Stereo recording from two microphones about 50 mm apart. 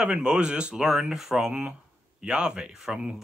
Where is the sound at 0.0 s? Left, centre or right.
Centre.